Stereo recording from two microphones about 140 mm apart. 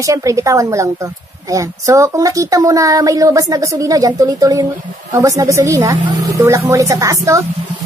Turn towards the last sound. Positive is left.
turn(degrees=-25)  # may be behind; listen again after turning